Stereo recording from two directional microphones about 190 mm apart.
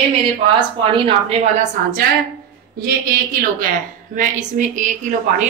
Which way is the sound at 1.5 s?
50° right (ahead or behind).